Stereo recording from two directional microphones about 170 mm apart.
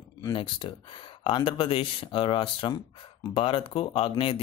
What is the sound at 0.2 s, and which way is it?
Speech, 25° left (ahead or behind).